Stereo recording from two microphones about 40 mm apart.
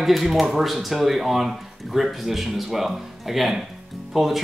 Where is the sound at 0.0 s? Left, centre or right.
Centre.